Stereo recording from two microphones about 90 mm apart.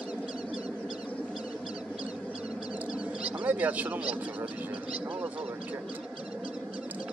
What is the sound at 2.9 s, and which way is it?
Bird, 15° right (ahead or behind).